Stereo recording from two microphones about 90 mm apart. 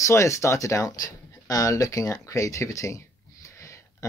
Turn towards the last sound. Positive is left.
turn(degrees=35)  # may be behind; listen again after turning